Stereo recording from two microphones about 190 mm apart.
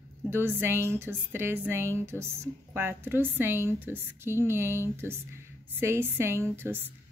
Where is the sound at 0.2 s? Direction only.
10° right (ahead or behind).